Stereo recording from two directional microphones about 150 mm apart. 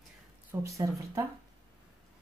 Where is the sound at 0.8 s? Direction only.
20° right (ahead or behind).